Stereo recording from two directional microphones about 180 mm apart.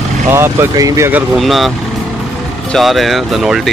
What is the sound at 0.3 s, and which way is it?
Speech, 15° right (ahead or behind).